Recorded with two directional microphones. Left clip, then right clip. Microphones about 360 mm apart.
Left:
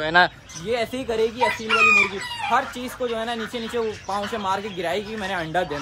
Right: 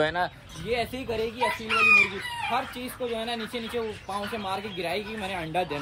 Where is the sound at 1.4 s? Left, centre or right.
Left.